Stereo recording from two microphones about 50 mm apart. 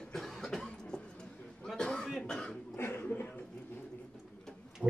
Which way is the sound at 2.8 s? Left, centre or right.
Left.